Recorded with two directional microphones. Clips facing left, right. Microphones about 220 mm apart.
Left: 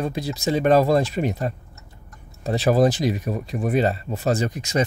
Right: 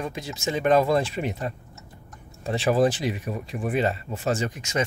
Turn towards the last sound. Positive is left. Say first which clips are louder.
# left 4 dB
turn(degrees=35)  # may be behind; listen again after turning